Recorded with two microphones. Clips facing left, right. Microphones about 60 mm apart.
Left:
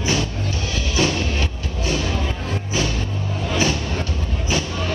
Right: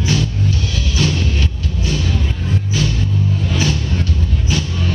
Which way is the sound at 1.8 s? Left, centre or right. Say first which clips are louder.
Right 1 dB; left.